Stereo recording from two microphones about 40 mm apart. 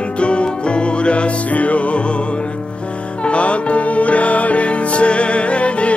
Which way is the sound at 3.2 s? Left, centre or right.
Left.